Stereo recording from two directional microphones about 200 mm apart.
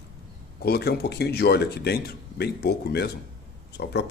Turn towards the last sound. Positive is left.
turn(degrees=60)  # may be behind; listen again after turning